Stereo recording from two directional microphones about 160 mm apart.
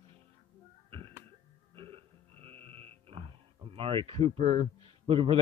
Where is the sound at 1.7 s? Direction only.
35° right (ahead or behind).